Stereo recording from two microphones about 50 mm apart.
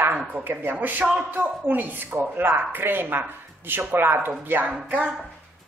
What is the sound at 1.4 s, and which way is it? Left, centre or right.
A woman's voice, right.